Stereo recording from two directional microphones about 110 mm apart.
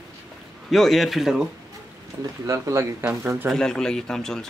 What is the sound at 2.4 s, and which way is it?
Speech, 30° right (ahead or behind).